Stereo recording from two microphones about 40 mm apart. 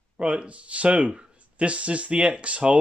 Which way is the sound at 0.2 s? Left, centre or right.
Right.